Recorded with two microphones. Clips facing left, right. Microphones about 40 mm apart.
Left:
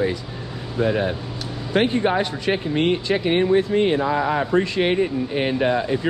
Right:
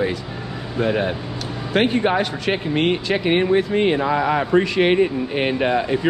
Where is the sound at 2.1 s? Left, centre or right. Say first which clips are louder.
Right 1 dB; right.